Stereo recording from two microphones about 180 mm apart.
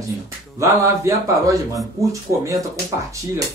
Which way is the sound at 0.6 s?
15° right (ahead or behind).